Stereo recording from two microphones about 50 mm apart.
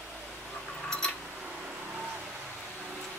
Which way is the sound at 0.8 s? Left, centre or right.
Centre.